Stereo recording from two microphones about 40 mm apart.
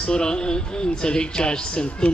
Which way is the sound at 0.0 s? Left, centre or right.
Left.